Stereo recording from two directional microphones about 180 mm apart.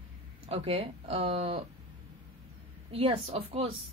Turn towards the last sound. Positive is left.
turn(degrees=-35)  # may be behind; listen again after turning